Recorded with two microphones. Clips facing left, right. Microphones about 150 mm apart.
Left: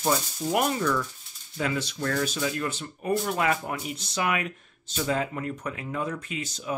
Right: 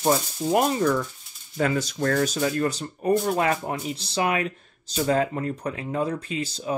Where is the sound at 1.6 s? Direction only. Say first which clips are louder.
Right 5 dB; 45° right (ahead or behind).